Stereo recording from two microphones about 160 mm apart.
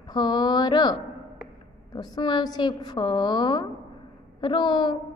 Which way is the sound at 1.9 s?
25° left (ahead or behind).